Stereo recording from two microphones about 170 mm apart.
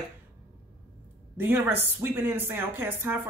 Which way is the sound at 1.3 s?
10° right (ahead or behind).